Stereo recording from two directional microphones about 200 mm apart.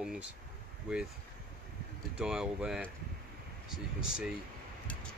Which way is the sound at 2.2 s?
5° right (ahead or behind).